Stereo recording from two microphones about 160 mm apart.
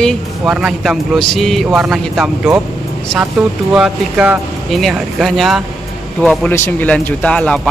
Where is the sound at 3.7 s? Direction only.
5° right (ahead or behind).